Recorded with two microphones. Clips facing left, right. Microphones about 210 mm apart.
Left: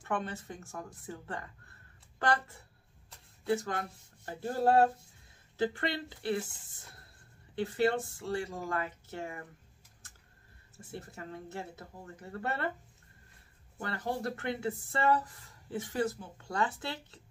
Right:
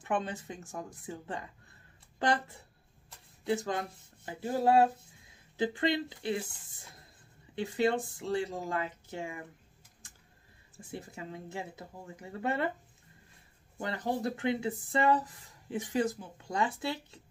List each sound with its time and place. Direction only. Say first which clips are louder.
0.0 s speech: right 2 dB; 15° right (ahead or behind)
7.5 s speech: even; 15° right (ahead or behind)
10.8 s speech: right 2 dB; 15° right (ahead or behind)
13.7 s speech: right 2 dB; 15° right (ahead or behind)